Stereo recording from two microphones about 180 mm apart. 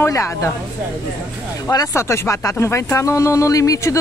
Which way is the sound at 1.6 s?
15° left (ahead or behind).